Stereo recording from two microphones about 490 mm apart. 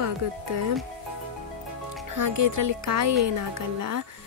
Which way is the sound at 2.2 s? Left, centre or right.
Right.